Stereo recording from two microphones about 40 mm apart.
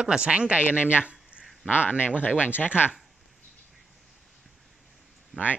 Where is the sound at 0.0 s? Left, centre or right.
Right.